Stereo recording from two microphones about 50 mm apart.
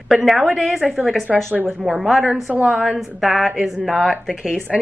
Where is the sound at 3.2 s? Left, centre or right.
Centre.